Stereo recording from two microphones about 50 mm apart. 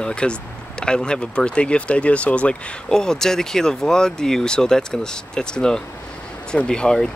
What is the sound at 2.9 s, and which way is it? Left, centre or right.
Speech, centre.